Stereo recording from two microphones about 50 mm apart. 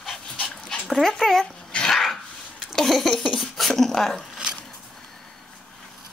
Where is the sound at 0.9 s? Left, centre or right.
Centre.